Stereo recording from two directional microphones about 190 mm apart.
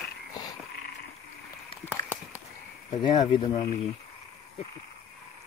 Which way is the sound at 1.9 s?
10° right (ahead or behind).